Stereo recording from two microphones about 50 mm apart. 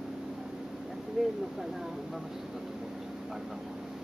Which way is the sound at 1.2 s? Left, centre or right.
Centre.